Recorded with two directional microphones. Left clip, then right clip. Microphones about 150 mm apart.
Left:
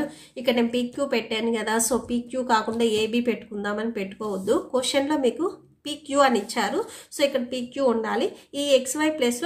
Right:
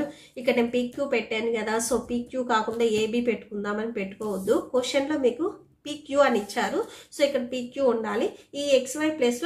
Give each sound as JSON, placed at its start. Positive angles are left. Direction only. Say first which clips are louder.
{"t": 0.4, "sound": "a woman's voice", "louder": "left 1 dB", "side_deg": 20}